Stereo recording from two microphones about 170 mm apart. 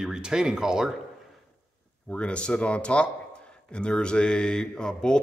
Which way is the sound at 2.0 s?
5° left (ahead or behind).